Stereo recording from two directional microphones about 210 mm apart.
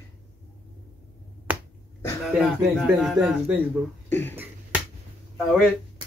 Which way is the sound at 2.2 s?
Centre (ahead or behind).